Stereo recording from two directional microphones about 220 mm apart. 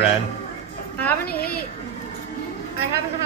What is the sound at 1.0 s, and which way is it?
Speech, 5° left (ahead or behind).